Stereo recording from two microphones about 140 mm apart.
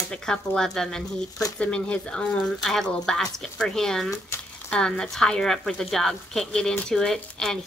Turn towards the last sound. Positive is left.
turn(degrees=5)  # may be behind; listen again after turning